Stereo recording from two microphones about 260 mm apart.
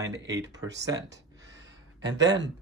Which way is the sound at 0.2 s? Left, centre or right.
Right.